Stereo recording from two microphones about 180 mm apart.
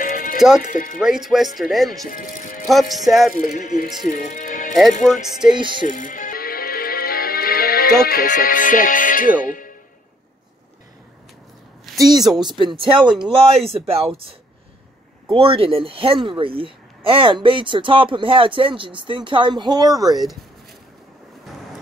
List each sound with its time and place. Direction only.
0.0 s music: 50° left (ahead or behind)
0.6 s speech: 45° left (ahead or behind)
0.9 s speech: centre (ahead or behind)
2.0 s speech: 50° left (ahead or behind)
2.6 s speech: centre (ahead or behind)
3.3 s speech: 45° left (ahead or behind)
5.0 s speech: centre (ahead or behind)
5.5 s speech: 25° right (ahead or behind)
5.9 s music: 45° left (ahead or behind)
12.0 s speech: 20° right (ahead or behind)
15.3 s speech: 30° right (ahead or behind)